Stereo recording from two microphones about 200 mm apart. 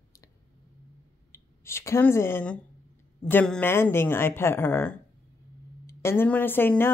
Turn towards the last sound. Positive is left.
turn(degrees=10)  # may be behind; listen again after turning